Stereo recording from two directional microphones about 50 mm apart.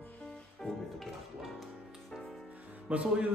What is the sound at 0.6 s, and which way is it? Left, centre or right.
Music, centre.